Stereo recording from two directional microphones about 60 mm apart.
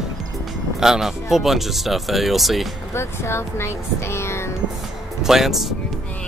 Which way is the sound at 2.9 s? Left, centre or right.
Left.